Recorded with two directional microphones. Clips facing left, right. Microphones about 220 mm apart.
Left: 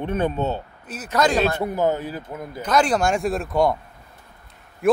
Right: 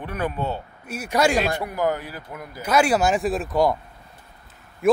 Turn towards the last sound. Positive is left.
turn(degrees=0)  # may be behind; listen again after turning